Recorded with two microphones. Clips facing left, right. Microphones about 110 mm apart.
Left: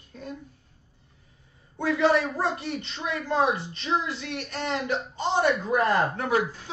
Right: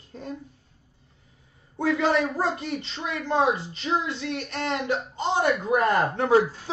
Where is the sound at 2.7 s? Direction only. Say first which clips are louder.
Right 1 dB; 25° right (ahead or behind).